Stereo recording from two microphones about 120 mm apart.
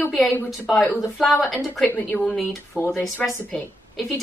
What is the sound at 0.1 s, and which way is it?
Speech, centre (ahead or behind).